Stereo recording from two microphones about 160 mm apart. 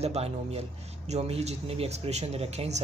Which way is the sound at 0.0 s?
40° right (ahead or behind).